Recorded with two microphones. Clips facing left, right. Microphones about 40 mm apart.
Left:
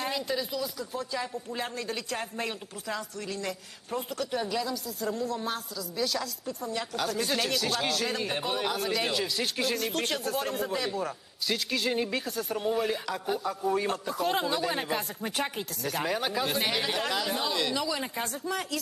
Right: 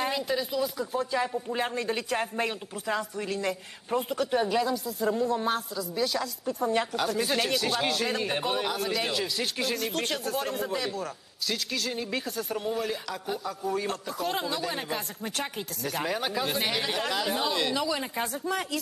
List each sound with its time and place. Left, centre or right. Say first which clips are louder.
0.0 s speech: right 2 dB; centre
6.6 s a woman's voice: right 8 dB; right
6.9 s speech: right 2 dB; centre
11.8 s speech: left 4 dB; centre
12.1 s speech: even; centre